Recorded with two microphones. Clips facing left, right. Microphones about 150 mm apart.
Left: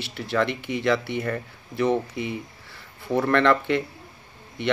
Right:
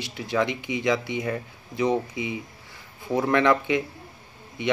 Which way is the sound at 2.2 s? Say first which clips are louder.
Left 1 dB; 60° left (ahead or behind).